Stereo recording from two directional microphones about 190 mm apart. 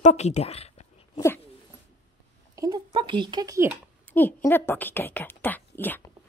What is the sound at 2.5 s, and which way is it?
Speech, 20° right (ahead or behind).